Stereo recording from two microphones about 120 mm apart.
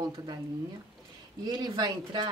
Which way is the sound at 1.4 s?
40° right (ahead or behind).